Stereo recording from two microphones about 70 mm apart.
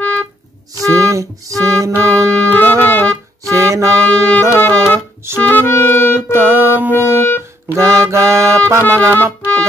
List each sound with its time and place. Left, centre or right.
0.0 s music: centre
0.7 s music: right
2.2 s music: centre
3.4 s music: right
4.1 s music: centre
5.4 s clarinet: left
6.3 s music: right
7.1 s music: left
7.7 s music: right